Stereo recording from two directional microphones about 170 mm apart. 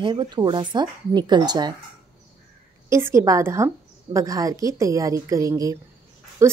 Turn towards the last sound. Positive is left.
turn(degrees=-20)  # may be behind; listen again after turning